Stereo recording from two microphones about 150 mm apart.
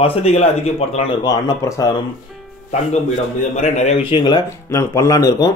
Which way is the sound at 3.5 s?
50° left (ahead or behind).